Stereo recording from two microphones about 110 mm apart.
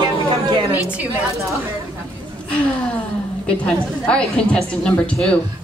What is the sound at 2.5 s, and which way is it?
Speech, 10° left (ahead or behind).